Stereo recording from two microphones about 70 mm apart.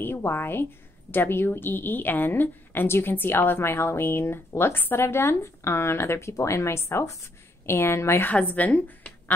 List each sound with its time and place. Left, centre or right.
0.0 s a woman's voice: left
8.3 s speech: left